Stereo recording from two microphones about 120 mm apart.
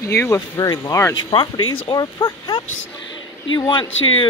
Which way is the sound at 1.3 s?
50° left (ahead or behind).